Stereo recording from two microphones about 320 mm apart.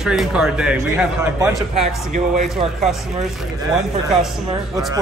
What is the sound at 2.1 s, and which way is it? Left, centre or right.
Speech, right.